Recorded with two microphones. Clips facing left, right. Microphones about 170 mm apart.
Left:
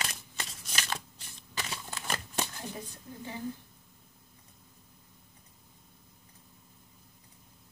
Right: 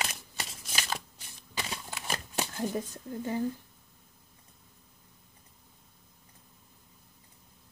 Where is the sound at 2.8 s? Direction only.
45° right (ahead or behind).